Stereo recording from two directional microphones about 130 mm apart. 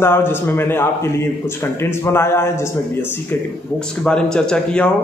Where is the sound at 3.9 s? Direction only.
5° left (ahead or behind).